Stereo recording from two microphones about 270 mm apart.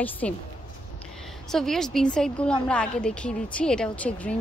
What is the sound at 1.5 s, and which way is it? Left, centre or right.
A woman's voice, centre.